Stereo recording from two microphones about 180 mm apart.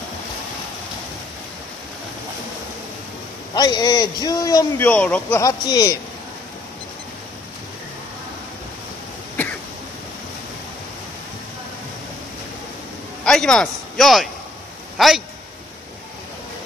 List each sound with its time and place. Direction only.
3.5 s a man's voice: 20° left (ahead or behind)
4.7 s speech: 10° left (ahead or behind)
5.4 s a man's voice: 20° left (ahead or behind)
13.2 s a man's voice: 5° left (ahead or behind)